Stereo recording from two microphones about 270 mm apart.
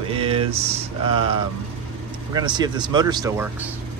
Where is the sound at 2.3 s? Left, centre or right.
Centre.